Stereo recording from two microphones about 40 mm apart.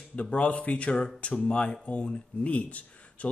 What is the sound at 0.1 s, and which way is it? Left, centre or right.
Speech, left.